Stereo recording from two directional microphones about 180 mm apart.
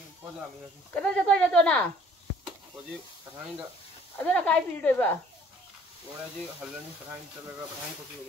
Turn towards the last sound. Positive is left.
turn(degrees=0)  # may be behind; listen again after turning